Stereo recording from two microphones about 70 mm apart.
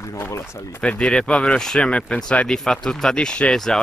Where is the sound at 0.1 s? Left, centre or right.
Left.